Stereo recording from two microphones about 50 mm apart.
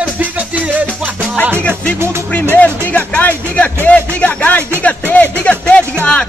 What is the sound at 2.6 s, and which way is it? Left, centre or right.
Music, left.